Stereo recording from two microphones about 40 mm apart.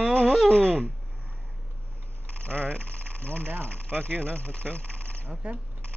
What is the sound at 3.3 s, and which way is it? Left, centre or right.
Speech, right.